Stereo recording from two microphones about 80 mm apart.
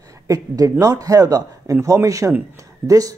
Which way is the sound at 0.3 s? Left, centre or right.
Right.